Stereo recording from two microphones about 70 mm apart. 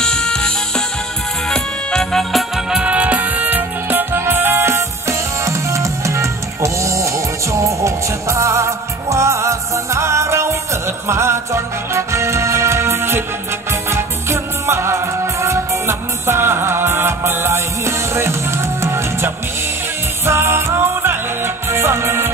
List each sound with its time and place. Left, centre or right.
0.0 s music: centre
2.8 s music: centre; by 22.3 s right